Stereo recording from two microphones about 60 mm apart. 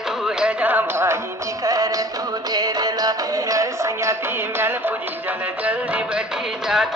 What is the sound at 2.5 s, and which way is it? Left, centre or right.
Music, right.